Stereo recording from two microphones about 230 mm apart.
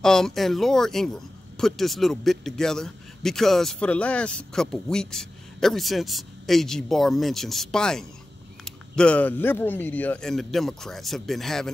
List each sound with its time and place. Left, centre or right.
0.0 s speech: centre